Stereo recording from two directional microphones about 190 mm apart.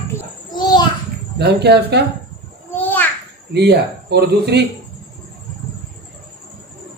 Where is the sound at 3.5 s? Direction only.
60° right (ahead or behind).